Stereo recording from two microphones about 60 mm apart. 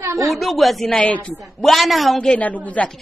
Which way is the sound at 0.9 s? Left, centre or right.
Left.